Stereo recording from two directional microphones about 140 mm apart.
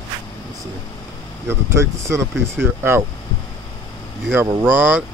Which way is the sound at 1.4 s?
20° right (ahead or behind).